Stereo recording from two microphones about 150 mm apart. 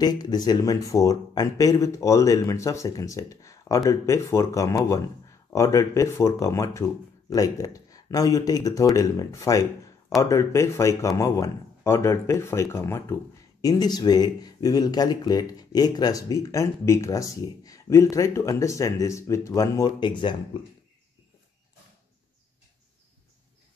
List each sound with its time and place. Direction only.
0.0 s speech: 25° left (ahead or behind)